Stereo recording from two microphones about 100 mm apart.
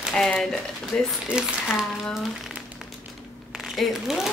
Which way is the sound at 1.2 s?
10° right (ahead or behind).